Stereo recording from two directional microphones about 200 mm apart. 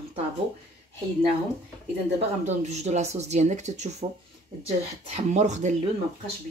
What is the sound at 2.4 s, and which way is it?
Speech, 35° right (ahead or behind).